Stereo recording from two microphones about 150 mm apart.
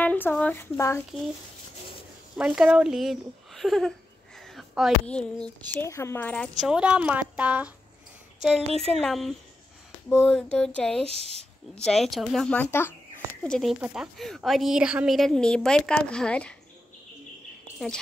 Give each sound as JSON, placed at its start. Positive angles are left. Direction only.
{"t": 0.0, "sound": "speech", "side_deg": 10}
{"t": 2.3, "sound": "a woman's voice", "side_deg": -5}
{"t": 4.4, "sound": "a sound", "side_deg": 0}
{"t": 5.0, "sound": "speech", "side_deg": 5}
{"t": 6.6, "sound": "a woman's voice", "side_deg": -5}
{"t": 10.0, "sound": "a woman's voice", "side_deg": 15}
{"t": 11.1, "sound": "speech", "side_deg": -40}
{"t": 11.7, "sound": "a woman's voice", "side_deg": 5}
{"t": 12.5, "sound": "speech", "side_deg": 15}
{"t": 13.7, "sound": "a woman's voice", "side_deg": -10}
{"t": 14.1, "sound": "a woman's voice", "side_deg": 0}